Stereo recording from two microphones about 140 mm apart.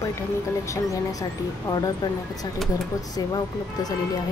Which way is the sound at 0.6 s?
20° left (ahead or behind).